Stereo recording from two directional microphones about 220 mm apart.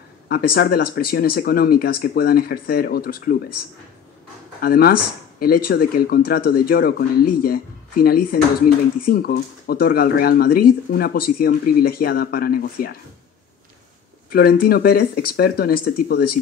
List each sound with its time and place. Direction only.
0.3 s speech: 45° left (ahead or behind)
14.3 s speech: 45° left (ahead or behind)